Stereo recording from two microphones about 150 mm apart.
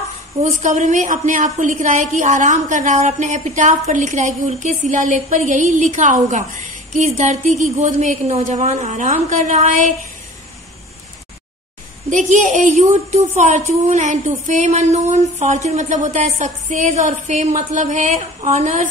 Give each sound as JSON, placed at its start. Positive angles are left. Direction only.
{"t": 0.4, "sound": "a woman's voice", "side_deg": -50}
{"t": 12.1, "sound": "speech", "side_deg": -55}